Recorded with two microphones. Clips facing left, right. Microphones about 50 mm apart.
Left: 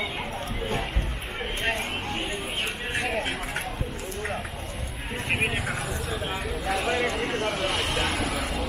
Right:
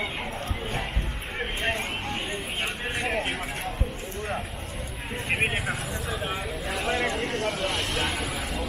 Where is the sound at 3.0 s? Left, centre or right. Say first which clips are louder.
Right 1 dB; centre.